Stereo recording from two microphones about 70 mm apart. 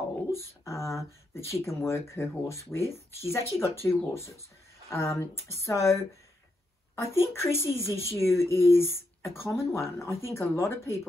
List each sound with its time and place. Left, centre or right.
0.3 s speech: left
7.0 s speech: left